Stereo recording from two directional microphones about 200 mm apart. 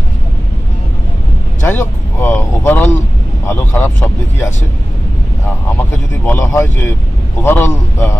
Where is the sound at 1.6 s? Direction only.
10° left (ahead or behind).